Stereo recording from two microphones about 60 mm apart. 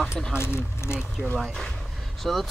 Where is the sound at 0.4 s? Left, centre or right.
Left.